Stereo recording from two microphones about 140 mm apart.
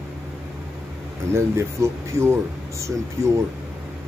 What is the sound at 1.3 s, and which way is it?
Speech, 20° right (ahead or behind).